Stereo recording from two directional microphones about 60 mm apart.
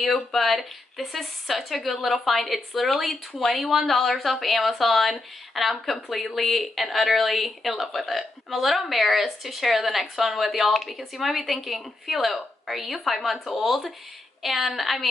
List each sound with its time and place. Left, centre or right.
0.3 s a woman's voice: centre